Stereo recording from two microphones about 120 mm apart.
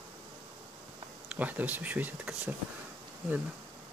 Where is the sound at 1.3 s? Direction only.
15° right (ahead or behind).